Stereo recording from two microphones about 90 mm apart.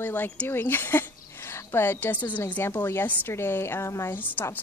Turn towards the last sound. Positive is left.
turn(degrees=20)  # may be behind; listen again after turning